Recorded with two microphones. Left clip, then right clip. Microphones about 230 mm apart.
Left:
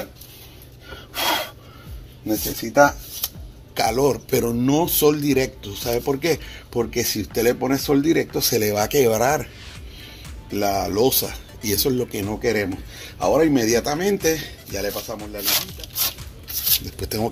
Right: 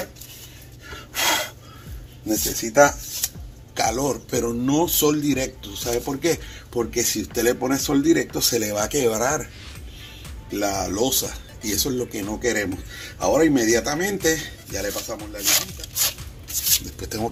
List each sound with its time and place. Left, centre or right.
1.1 s gasp: centre
2.2 s speech: left
3.7 s speech: left
10.5 s speech: left
15.4 s a sound: centre
17.0 s speech: left